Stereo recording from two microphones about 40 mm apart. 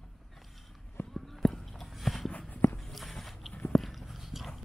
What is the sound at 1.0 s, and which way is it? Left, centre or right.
Run, left.